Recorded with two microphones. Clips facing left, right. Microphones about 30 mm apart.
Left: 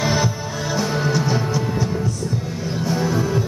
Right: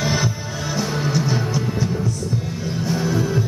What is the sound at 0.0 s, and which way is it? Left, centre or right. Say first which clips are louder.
Music: left 2 dB; centre.